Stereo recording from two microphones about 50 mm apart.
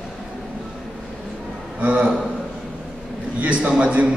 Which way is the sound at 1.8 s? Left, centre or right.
Right.